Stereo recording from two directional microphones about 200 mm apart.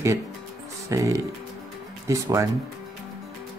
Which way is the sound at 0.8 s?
15° right (ahead or behind).